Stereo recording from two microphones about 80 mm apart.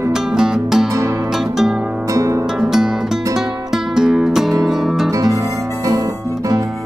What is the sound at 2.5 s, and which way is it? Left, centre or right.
Music, centre.